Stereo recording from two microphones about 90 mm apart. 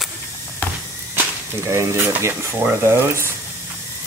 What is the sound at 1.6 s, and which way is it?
Speech, 30° right (ahead or behind).